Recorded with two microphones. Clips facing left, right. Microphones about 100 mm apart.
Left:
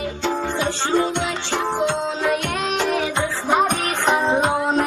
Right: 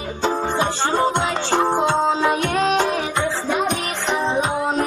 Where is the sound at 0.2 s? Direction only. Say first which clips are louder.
Right 3 dB; 40° right (ahead or behind).